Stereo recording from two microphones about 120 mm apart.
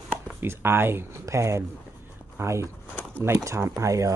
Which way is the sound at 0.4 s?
20° right (ahead or behind).